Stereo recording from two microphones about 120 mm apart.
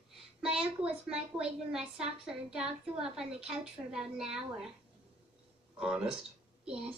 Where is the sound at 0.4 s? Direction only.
5° right (ahead or behind).